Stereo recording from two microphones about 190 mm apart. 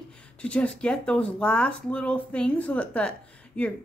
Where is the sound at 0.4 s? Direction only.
5° left (ahead or behind).